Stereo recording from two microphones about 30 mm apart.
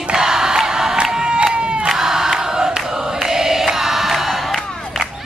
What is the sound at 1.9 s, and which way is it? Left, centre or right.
Crowd, centre.